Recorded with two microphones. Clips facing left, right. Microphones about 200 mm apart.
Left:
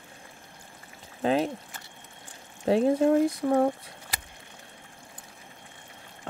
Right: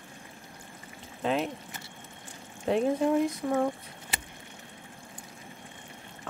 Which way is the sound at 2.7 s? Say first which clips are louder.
Left 4 dB; 35° left (ahead or behind).